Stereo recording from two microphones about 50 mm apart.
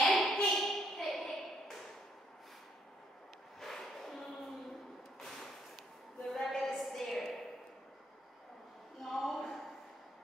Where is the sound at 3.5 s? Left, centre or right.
Centre.